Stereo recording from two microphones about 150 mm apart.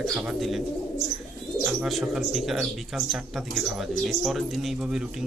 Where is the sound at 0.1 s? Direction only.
Centre (ahead or behind).